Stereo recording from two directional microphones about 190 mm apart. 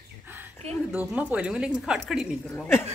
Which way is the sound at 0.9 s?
5° right (ahead or behind).